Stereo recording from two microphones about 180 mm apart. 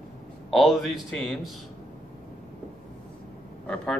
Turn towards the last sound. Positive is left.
turn(degrees=5)  # may be behind; listen again after turning